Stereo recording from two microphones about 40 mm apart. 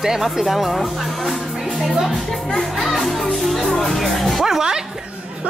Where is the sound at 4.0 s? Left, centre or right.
Centre.